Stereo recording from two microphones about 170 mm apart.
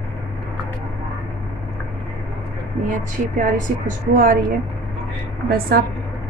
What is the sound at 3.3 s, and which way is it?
A woman's voice, 50° right (ahead or behind).